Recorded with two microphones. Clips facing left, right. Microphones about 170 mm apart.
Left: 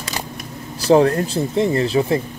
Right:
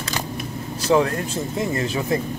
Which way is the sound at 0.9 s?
35° left (ahead or behind).